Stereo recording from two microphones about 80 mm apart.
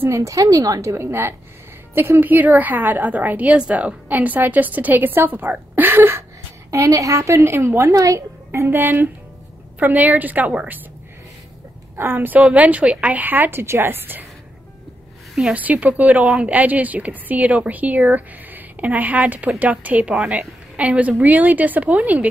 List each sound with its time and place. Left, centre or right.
0.0 s a woman's voice: right
6.7 s a woman's voice: right; by 10.8 s centre
12.0 s a woman's voice: right
15.5 s a woman's voice: centre